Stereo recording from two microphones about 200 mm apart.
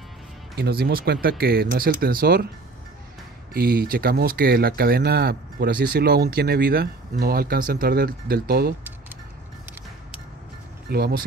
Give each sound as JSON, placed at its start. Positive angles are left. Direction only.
{"t": 0.6, "sound": "speech", "side_deg": -50}
{"t": 3.5, "sound": "speech", "side_deg": -50}
{"t": 10.9, "sound": "speech", "side_deg": -50}